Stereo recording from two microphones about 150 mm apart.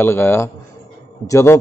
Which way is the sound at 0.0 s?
15° left (ahead or behind).